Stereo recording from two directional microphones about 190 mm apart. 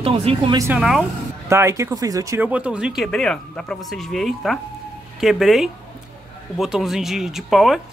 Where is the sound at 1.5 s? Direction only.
15° right (ahead or behind).